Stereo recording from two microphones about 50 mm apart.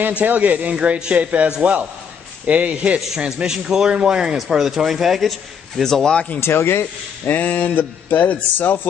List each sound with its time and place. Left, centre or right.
0.2 s a man's voice: right; by 6.1 s centre
6.4 s speech: left
7.3 s speech: left